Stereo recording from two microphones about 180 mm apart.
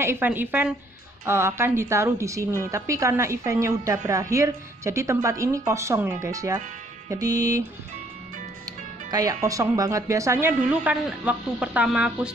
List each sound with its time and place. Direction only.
0.0 s a woman's voice: 10° right (ahead or behind)
7.1 s music: 20° right (ahead or behind)
9.1 s a woman's voice: 20° right (ahead or behind)